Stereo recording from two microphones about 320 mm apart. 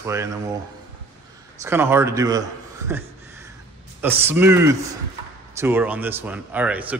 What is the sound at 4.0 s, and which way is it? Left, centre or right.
Speech, centre.